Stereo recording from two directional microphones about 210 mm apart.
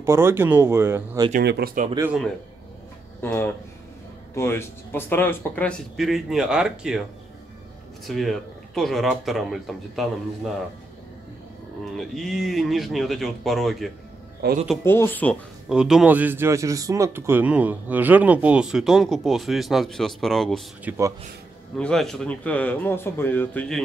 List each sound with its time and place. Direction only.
0.0 s speech: 10° right (ahead or behind)
1.4 s speech: 50° right (ahead or behind)
2.0 s speech: 10° right (ahead or behind)
3.2 s speech: 10° left (ahead or behind)
8.1 s speech: centre (ahead or behind)
11.8 s speech: centre (ahead or behind)
14.4 s speech: 50° right (ahead or behind)
14.9 s speech: 10° left (ahead or behind)
15.7 s speech: 5° right (ahead or behind)